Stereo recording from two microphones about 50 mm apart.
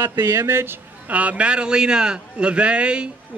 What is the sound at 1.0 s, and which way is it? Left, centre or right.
A man's voice, right.